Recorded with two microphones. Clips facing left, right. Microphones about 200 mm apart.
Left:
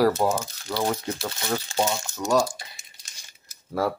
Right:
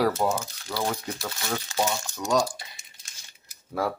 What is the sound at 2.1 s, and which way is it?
Speech, 5° left (ahead or behind).